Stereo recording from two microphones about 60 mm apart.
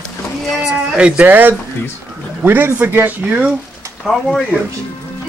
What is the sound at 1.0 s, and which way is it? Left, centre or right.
Speech, right.